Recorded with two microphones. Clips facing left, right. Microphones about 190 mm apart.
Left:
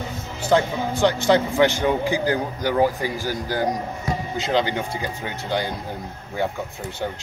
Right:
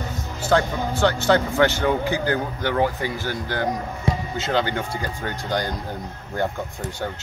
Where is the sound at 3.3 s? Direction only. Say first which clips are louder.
Left 2 dB; 10° left (ahead or behind).